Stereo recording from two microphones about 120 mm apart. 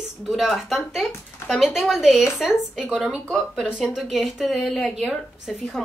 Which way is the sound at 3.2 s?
5° left (ahead or behind).